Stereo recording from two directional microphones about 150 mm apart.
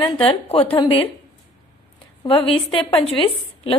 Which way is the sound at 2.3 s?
35° left (ahead or behind).